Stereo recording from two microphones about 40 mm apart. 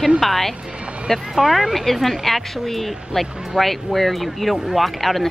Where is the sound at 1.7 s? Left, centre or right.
Centre.